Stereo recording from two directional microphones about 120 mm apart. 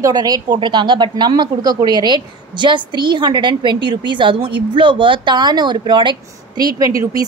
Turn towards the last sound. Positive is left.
turn(degrees=-30)  # may be behind; listen again after turning